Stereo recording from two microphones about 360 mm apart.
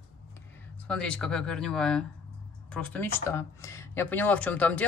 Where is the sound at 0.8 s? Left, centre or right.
Centre.